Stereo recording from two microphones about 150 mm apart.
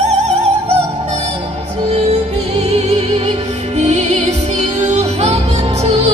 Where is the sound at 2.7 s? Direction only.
45° right (ahead or behind).